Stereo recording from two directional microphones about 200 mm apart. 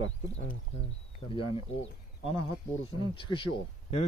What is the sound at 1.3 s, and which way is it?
Speech, 25° left (ahead or behind).